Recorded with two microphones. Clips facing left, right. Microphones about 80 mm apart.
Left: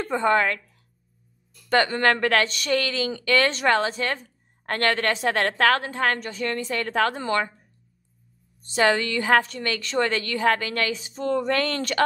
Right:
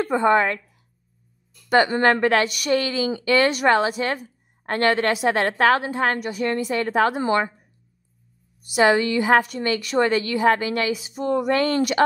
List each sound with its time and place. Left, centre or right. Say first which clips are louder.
0.0 s a woman's voice: right 3 dB; right
1.7 s a woman's voice: right 3 dB; right
8.7 s a woman's voice: right 4 dB; right